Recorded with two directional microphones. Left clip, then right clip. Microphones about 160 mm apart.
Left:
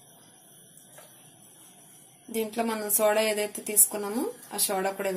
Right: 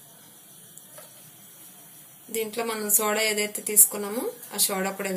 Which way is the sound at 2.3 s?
60° left (ahead or behind).